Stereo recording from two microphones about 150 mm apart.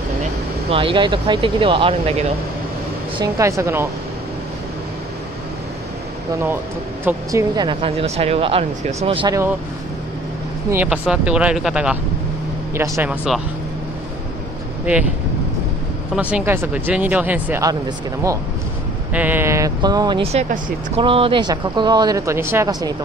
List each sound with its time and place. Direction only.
0.7 s speech: 35° right (ahead or behind)
3.2 s speech: 20° right (ahead or behind)
7.1 s speech: 20° right (ahead or behind)
8.0 s speech: 40° right (ahead or behind)
9.3 s speech: 20° right (ahead or behind)
10.7 s speech: 10° right (ahead or behind)
12.7 s speech: 15° right (ahead or behind)
16.2 s speech: 10° right (ahead or behind)
17.6 s speech: 20° right (ahead or behind)
19.1 s speech: 10° right (ahead or behind); by 20.2 s 30° right (ahead or behind)
20.9 s speech: 40° right (ahead or behind)